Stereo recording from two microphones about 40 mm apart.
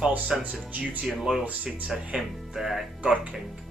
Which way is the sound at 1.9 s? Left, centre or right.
Centre.